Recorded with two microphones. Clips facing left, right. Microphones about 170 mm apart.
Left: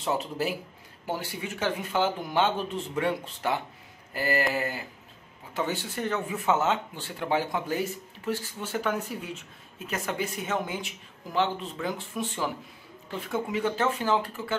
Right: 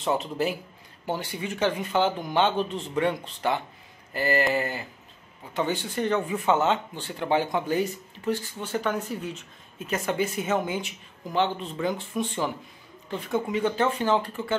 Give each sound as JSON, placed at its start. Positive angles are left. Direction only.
{"t": 0.0, "sound": "speech", "side_deg": 5}